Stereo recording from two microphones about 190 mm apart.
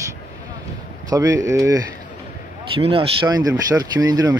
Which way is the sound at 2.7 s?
30° right (ahead or behind).